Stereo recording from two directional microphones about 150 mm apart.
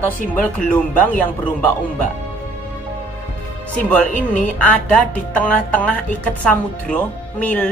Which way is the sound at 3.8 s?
10° left (ahead or behind).